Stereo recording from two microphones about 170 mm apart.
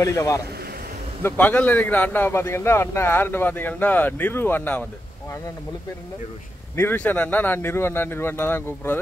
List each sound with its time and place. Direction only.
0.0 s a man's voice: 20° left (ahead or behind)
6.8 s a man's voice: 10° left (ahead or behind)